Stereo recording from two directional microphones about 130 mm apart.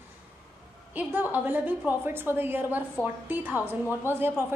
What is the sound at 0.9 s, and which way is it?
A woman's voice, 15° right (ahead or behind).